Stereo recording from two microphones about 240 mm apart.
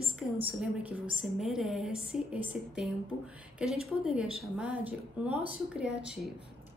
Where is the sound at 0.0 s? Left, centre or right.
Right.